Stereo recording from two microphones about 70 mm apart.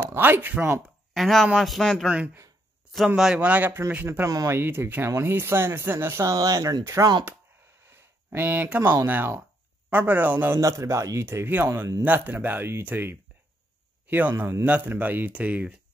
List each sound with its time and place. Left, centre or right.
0.0 s speech: right
1.1 s a man's voice: centre
2.0 s speech: centre
3.3 s speech: right
3.9 s speech: right
6.3 s speech: right
7.8 s speech: right
10.6 s speech: right
11.5 s speech: right
14.3 s speech: right
14.6 s speech: right